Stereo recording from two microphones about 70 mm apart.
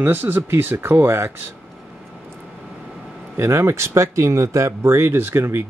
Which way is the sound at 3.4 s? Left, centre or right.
Right.